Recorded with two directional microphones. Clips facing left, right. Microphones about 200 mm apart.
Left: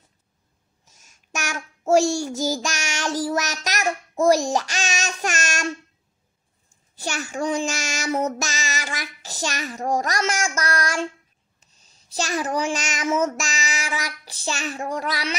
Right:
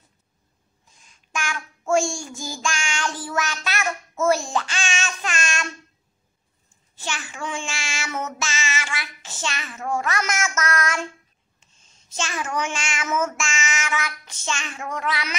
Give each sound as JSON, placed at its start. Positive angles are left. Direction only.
{"t": 0.8, "sound": "child singing", "side_deg": 45}
{"t": 7.0, "sound": "child singing", "side_deg": 40}